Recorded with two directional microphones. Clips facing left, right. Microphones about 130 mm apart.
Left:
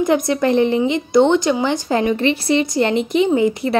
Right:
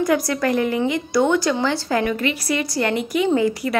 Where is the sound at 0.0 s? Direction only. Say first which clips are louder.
Left 3 dB; 20° left (ahead or behind).